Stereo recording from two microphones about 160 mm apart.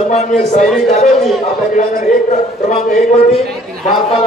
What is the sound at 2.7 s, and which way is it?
Speech, 55° left (ahead or behind).